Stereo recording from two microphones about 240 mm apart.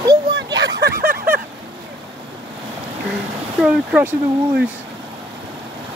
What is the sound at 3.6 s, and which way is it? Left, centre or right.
Speech, centre.